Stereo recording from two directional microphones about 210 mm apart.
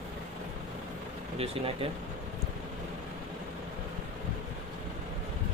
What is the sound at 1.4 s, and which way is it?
Speech, 30° right (ahead or behind).